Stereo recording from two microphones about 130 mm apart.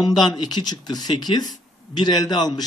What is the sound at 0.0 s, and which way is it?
Speech, 30° left (ahead or behind).